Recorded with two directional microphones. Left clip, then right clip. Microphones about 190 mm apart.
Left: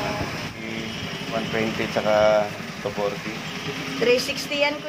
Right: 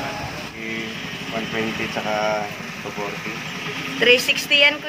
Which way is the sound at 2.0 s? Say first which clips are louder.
Left 5 dB; 40° left (ahead or behind).